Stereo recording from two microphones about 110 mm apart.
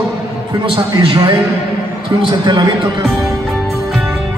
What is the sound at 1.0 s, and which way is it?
A man's voice, 45° right (ahead or behind).